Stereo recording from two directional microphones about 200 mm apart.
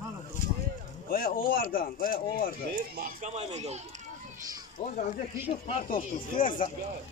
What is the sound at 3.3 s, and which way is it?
Speech, 35° right (ahead or behind).